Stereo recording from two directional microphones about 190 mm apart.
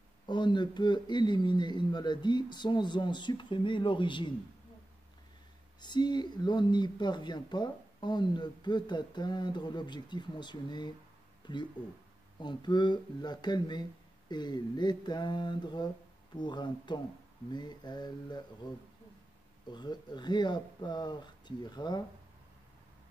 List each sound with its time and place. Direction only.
0.3 s speech: 25° left (ahead or behind)
5.8 s speech: 25° left (ahead or behind)
19.7 s speech: 20° left (ahead or behind)